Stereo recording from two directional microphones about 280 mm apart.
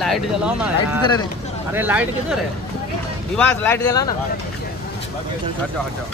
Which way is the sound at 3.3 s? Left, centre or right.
Centre.